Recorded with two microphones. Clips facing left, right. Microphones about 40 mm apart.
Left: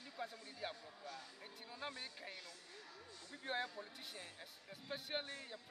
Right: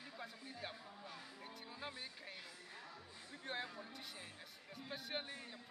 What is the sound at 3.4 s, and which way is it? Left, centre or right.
Speech, centre.